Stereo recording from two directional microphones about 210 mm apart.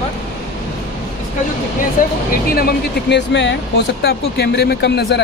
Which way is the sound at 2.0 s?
40° left (ahead or behind).